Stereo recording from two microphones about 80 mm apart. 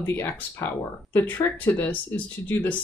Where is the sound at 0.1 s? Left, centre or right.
Left.